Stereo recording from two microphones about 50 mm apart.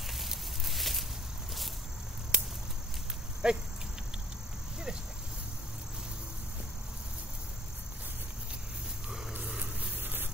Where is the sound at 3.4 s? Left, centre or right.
Centre.